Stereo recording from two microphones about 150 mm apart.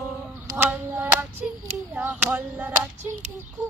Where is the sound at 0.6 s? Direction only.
10° right (ahead or behind).